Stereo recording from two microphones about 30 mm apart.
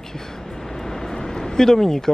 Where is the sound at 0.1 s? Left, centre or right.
Centre.